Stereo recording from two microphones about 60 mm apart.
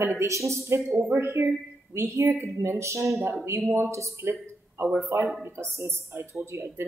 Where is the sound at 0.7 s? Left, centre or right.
Right.